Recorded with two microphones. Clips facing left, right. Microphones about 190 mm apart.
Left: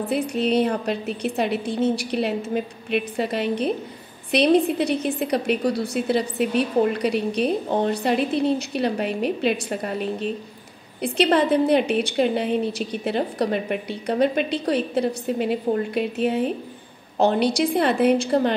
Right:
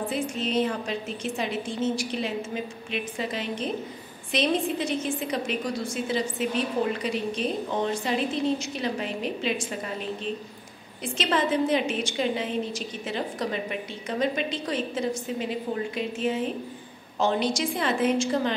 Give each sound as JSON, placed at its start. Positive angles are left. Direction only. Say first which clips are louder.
{"t": 0.1, "sound": "a woman's voice", "louder": "left 9 dB", "side_deg": 65}
{"t": 11.0, "sound": "a woman's voice", "louder": "left 7 dB", "side_deg": 65}